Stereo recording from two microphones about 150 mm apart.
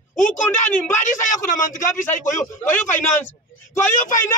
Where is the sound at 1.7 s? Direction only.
55° left (ahead or behind).